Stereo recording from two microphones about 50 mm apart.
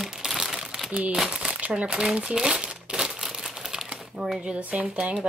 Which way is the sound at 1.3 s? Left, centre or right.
Centre.